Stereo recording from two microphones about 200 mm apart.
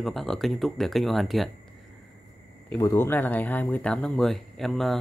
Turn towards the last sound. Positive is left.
turn(degrees=0)  # may be behind; listen again after turning